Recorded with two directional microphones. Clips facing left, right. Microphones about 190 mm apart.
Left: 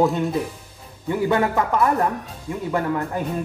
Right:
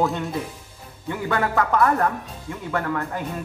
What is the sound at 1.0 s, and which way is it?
Speech, 20° left (ahead or behind).